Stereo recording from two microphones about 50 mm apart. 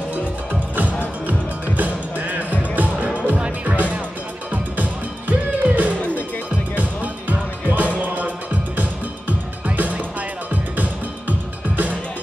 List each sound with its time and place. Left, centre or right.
0.1 s music: right
5.3 s music: right
9.7 s music: right